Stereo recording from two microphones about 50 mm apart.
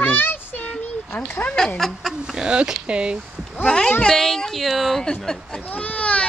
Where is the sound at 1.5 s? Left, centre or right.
Centre.